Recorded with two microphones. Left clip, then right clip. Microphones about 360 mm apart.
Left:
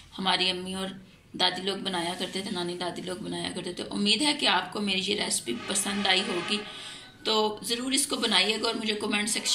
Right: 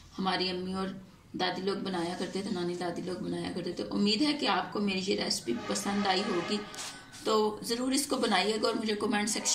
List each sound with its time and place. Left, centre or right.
0.2 s a woman's voice: centre